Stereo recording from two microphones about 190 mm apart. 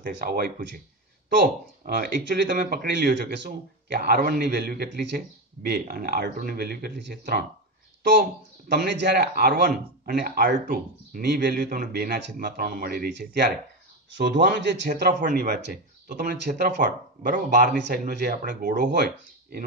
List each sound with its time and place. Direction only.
0.0 s speech: 50° right (ahead or behind)
2.0 s a man's voice: 65° right (ahead or behind)
14.6 s a man's voice: 65° right (ahead or behind)
14.9 s speech: 55° right (ahead or behind)
18.9 s speech: 55° right (ahead or behind)